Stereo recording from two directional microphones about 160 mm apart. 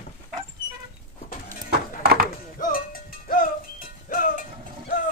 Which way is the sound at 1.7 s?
85° right.